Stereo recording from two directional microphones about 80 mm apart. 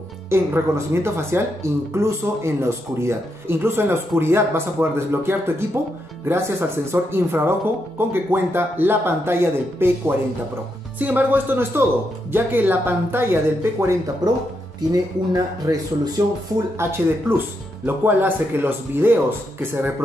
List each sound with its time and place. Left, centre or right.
0.3 s speech: right
14.8 s speech: right
16.8 s speech: right